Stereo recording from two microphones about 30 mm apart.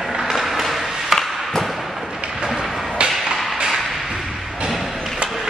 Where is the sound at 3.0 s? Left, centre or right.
Right.